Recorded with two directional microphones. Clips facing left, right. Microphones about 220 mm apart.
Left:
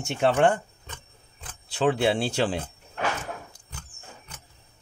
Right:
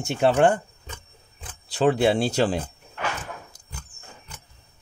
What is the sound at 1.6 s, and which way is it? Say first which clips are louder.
Speech: right 3 dB; 40° right (ahead or behind).